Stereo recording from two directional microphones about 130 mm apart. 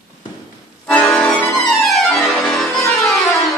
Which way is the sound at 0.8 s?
10° left (ahead or behind).